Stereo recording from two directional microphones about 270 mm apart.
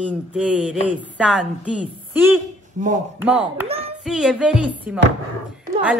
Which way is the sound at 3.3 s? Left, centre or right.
Centre.